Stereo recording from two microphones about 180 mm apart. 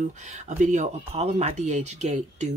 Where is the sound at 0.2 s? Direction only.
40° right (ahead or behind).